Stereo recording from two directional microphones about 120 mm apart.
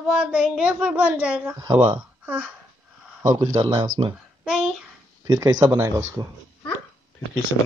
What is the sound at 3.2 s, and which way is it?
Speech, 30° right (ahead or behind).